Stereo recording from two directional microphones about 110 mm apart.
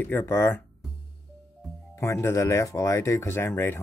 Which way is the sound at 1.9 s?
25° left (ahead or behind).